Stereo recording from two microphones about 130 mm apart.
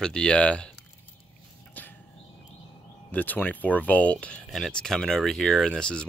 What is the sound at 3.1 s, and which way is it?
Speech, 15° left (ahead or behind).